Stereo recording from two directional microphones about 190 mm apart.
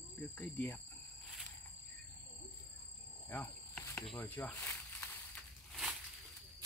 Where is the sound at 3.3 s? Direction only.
10° left (ahead or behind).